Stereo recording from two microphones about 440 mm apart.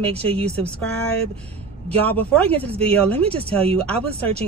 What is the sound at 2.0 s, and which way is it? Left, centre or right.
Speech, centre.